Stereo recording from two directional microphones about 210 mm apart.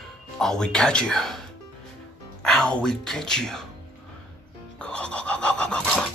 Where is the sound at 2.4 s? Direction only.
5° left (ahead or behind).